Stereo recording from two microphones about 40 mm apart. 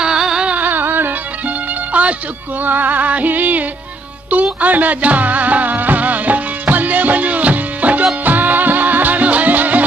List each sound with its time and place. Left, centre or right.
0.0 s a sound: centre
0.5 s music: right
1.9 s music: right
2.6 s music: right